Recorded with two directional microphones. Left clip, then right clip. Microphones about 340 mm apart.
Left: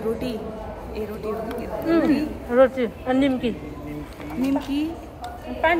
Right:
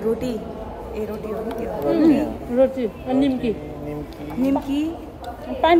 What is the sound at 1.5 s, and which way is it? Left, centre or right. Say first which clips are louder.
Speech: right 3 dB; centre.